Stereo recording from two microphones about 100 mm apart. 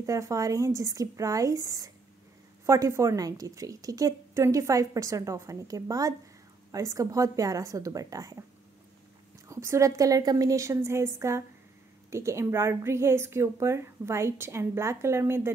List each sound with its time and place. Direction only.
0.0 s a woman's voice: 35° right (ahead or behind)
9.5 s a woman's voice: 30° right (ahead or behind)